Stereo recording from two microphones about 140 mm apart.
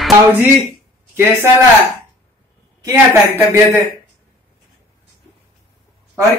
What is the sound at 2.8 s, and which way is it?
Speech, 20° right (ahead or behind).